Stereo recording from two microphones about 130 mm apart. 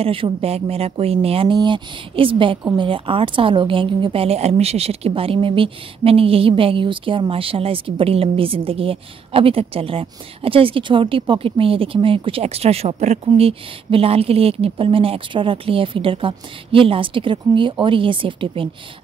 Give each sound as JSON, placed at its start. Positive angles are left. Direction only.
{"t": 0.0, "sound": "speech", "side_deg": -45}